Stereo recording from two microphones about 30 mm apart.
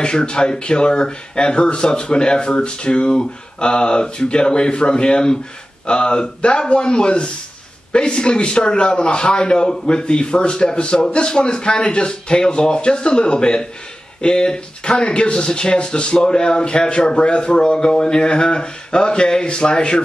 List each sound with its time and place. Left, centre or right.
0.0 s speech: left